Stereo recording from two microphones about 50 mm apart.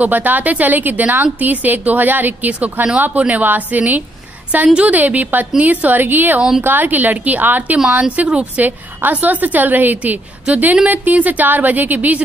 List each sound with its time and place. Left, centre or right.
0.0 s a woman's voice: right
8.6 s a woman's voice: right